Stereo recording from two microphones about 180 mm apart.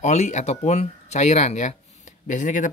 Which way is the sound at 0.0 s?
40° left (ahead or behind).